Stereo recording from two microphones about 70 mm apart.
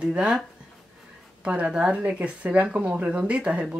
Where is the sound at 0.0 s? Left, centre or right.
Centre.